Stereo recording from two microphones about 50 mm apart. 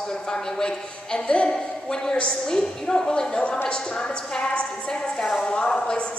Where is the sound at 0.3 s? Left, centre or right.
Centre.